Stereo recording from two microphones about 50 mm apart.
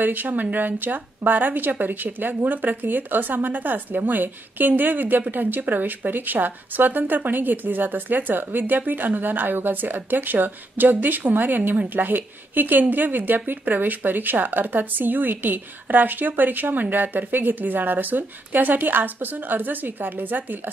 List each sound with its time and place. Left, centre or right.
0.0 s speech: right